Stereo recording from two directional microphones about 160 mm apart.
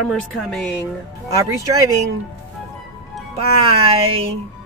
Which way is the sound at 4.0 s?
35° right (ahead or behind).